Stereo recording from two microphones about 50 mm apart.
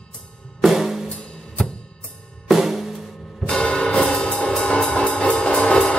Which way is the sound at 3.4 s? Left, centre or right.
Centre.